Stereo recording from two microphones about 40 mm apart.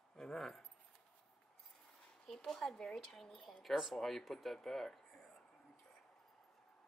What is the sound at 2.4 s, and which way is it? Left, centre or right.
A woman's voice, centre.